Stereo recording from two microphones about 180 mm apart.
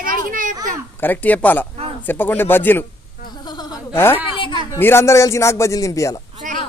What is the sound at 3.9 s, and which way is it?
Speech, 10° left (ahead or behind).